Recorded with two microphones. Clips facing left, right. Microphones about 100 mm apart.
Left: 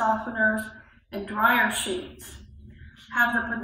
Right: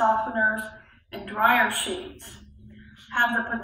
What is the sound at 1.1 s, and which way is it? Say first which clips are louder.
Speech: right 1 dB; 15° left (ahead or behind).